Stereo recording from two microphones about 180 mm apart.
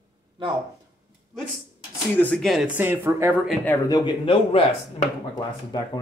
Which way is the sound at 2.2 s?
5° left (ahead or behind).